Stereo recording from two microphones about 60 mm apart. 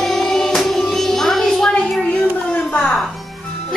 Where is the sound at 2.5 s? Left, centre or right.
Left.